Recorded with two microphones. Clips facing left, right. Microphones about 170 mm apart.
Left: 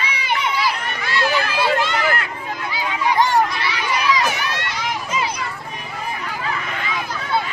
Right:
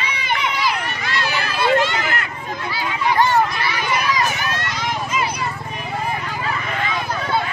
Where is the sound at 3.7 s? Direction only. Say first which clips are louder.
Left 1 dB; 50° right (ahead or behind).